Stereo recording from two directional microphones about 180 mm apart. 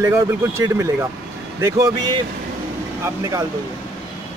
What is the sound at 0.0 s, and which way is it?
A man's voice, 15° right (ahead or behind).